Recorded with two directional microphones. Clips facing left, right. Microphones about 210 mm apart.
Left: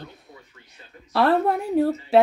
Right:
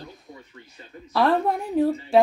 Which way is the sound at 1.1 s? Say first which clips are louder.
Left 1 dB; 5° left (ahead or behind).